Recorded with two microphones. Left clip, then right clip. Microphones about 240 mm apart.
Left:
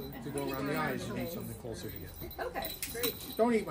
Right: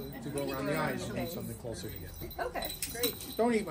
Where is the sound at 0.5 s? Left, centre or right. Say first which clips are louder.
Right 1 dB; centre.